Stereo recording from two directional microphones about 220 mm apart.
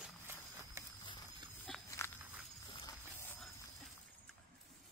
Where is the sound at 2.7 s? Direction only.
20° left (ahead or behind).